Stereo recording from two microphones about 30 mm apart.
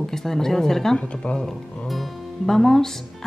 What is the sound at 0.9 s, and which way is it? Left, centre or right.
Speech, left.